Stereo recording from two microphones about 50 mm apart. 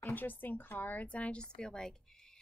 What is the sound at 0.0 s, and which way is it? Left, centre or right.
A woman's voice, left.